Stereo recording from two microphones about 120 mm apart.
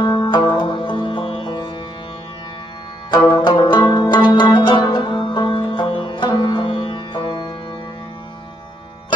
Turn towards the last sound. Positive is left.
turn(degrees=40)  # may be behind; listen again after turning